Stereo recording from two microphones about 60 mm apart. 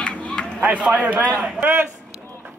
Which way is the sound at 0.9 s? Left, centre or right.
Right.